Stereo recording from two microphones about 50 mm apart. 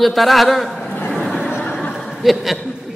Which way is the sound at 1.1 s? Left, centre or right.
Centre.